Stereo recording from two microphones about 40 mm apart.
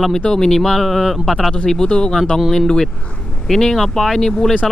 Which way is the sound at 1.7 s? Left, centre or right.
Left.